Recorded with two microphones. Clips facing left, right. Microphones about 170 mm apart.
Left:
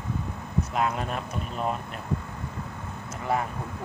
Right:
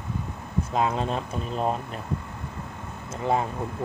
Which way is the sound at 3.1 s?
25° right (ahead or behind).